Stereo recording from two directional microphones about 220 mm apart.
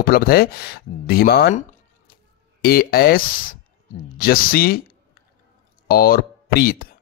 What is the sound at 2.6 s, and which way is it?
Speech, 45° left (ahead or behind).